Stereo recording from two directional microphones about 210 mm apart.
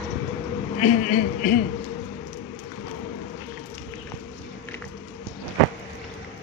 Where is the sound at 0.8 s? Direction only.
40° left (ahead or behind).